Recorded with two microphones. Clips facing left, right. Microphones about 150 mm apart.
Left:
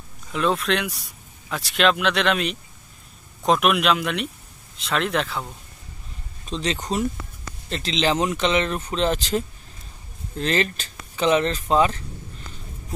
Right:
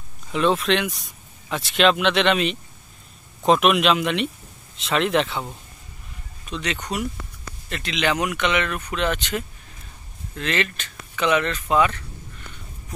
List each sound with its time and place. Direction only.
0.3 s speech: centre (ahead or behind)
6.4 s speech: 30° left (ahead or behind)
11.7 s vehicle: 30° left (ahead or behind)